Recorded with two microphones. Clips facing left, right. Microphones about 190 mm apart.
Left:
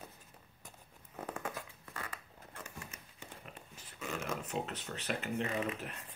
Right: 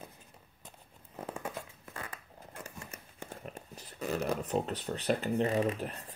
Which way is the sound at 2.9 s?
50° right (ahead or behind).